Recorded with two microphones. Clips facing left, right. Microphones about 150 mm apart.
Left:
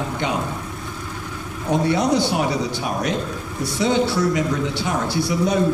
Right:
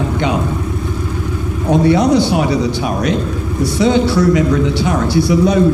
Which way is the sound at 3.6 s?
80° right.